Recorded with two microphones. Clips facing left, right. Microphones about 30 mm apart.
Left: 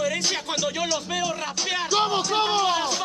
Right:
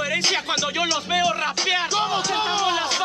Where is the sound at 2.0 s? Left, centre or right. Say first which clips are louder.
Right 1 dB; right.